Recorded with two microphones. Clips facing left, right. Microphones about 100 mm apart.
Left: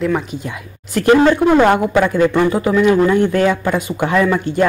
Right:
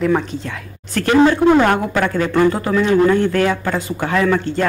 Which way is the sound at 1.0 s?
20° left (ahead or behind).